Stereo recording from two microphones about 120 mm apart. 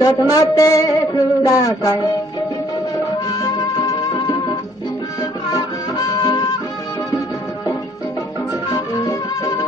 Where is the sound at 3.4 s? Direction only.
30° left (ahead or behind).